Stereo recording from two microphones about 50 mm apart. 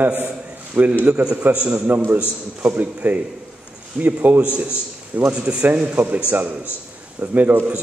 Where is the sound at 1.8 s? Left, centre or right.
Right.